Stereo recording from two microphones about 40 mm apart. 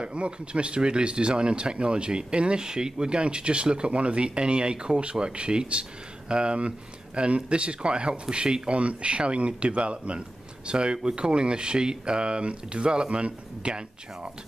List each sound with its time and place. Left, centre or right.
0.0 s speech: right